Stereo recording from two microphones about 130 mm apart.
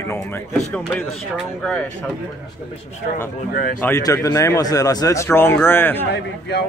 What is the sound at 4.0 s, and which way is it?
Speech, 30° left (ahead or behind).